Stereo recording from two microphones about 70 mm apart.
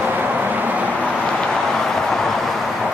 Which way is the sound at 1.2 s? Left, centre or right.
Centre.